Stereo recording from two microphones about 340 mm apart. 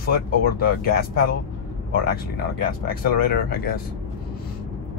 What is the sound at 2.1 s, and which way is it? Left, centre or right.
Speech, left.